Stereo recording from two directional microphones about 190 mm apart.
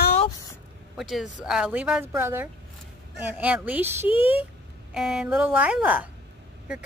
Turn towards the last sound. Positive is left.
turn(degrees=-10)  # may be behind; listen again after turning